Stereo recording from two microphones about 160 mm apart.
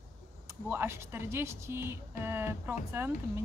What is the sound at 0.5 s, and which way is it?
Speech, 15° right (ahead or behind).